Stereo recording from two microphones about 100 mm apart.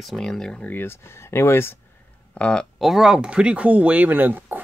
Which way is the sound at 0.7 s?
20° left (ahead or behind).